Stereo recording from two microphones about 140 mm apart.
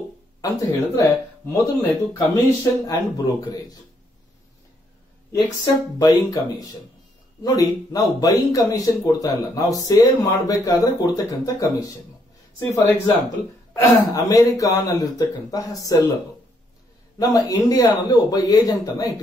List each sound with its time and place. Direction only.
0.4 s speech: 25° left (ahead or behind)
5.9 s speech: 30° left (ahead or behind)
14.1 s speech: 25° left (ahead or behind)
17.2 s speech: 25° left (ahead or behind)